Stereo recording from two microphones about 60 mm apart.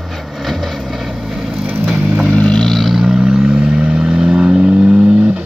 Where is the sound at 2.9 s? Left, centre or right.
Centre.